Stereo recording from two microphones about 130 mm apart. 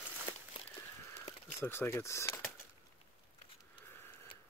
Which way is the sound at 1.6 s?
20° left (ahead or behind).